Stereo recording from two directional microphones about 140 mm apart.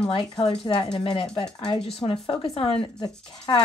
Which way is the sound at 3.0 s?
30° left (ahead or behind).